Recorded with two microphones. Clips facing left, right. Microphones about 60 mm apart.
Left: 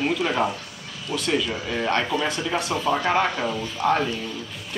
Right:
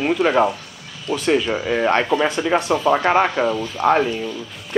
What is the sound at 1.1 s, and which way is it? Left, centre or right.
A man's voice, right.